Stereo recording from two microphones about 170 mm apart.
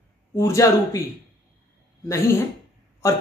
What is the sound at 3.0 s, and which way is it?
Speech, 15° left (ahead or behind).